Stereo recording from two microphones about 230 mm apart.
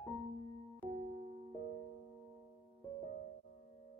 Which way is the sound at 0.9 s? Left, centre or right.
Right.